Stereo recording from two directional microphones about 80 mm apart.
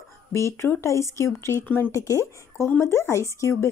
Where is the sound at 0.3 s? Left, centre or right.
Left.